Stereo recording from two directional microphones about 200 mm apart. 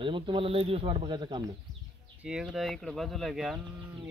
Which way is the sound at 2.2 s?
5° right (ahead or behind).